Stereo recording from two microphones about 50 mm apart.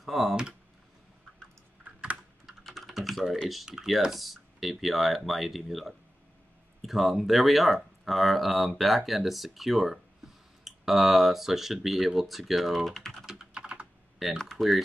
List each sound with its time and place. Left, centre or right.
0.0 s speech: centre
2.4 s computer keyboard: centre
3.4 s speech: centre
13.2 s typing: centre
14.2 s speech: centre